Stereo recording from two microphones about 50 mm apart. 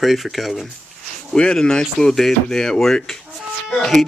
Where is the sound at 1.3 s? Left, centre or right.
Centre.